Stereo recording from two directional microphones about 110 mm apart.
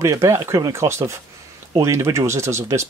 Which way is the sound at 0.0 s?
30° right (ahead or behind).